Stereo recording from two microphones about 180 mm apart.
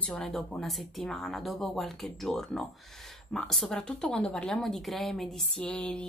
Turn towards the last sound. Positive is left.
turn(degrees=5)  # may be behind; listen again after turning